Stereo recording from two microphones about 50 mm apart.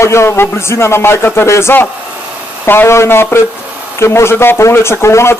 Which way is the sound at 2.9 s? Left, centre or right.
Left.